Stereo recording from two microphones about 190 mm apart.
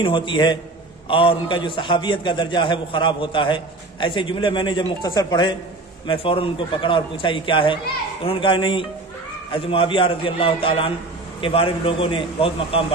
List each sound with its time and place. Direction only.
0.0 s a man's voice: 25° left (ahead or behind)